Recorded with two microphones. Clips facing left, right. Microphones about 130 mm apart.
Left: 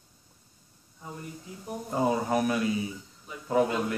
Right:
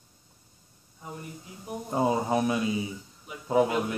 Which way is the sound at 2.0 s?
20° right (ahead or behind).